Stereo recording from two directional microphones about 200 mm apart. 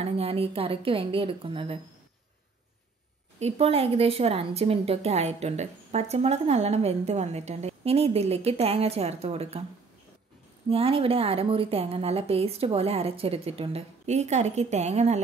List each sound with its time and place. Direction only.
0.0 s a woman's voice: 30° right (ahead or behind)
3.3 s a woman's voice: 30° right (ahead or behind)
10.7 s a woman's voice: 30° right (ahead or behind)